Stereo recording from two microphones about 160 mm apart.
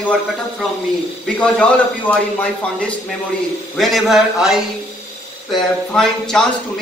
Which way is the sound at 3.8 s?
Centre (ahead or behind).